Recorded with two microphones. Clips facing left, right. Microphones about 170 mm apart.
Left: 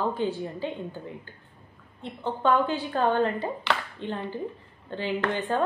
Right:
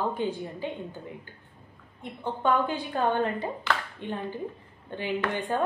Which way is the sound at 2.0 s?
10° right (ahead or behind).